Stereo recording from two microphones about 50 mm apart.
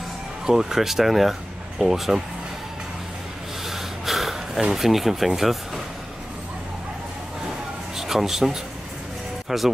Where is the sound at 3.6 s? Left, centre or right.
Centre.